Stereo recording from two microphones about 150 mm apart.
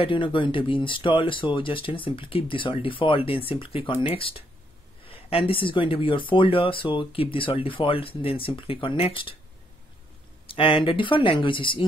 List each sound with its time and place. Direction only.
0.0 s speech: 35° left (ahead or behind)
10.5 s speech: 35° left (ahead or behind)